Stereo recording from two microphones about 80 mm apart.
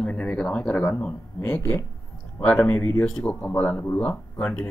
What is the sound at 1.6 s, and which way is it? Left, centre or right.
Speech, left.